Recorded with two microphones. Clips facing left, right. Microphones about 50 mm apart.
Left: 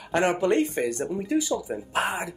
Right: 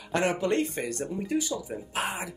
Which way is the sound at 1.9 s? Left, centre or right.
Left.